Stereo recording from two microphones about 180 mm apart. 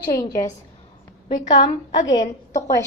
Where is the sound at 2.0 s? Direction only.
25° left (ahead or behind).